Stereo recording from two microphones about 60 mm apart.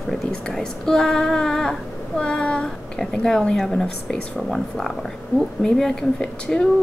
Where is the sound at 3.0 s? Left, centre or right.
Centre.